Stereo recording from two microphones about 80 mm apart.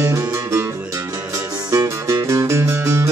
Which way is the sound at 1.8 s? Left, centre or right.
Right.